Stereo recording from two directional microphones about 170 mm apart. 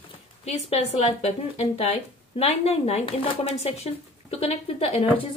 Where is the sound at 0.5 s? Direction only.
40° left (ahead or behind).